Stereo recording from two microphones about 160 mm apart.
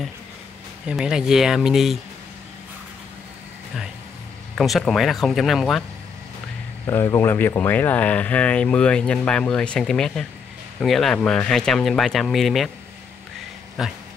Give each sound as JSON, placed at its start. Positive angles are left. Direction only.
{"t": 0.8, "sound": "speech", "side_deg": -5}
{"t": 4.6, "sound": "speech", "side_deg": 0}
{"t": 6.9, "sound": "speech", "side_deg": 15}
{"t": 13.8, "sound": "speech", "side_deg": -5}